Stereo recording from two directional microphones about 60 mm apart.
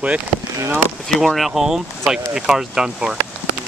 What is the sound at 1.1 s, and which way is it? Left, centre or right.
Speech, centre.